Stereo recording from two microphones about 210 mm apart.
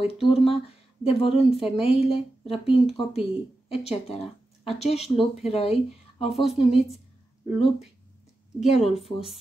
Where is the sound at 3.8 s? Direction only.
30° left (ahead or behind).